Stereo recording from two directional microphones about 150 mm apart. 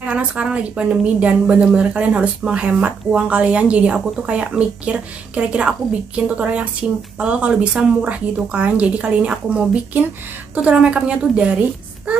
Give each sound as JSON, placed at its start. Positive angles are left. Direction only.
{"t": 0.0, "sound": "a woman's voice", "side_deg": -5}